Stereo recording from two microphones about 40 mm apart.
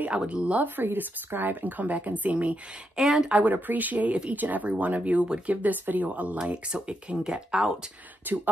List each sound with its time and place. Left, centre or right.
0.3 s speech: right
0.7 s speech: right
3.0 s speech: centre
3.3 s speech: right
6.3 s speech: right
8.3 s speech: right